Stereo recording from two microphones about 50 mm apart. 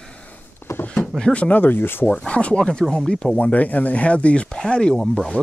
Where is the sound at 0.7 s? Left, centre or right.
Left.